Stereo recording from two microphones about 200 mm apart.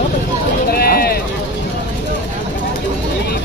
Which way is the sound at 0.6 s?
50° left (ahead or behind).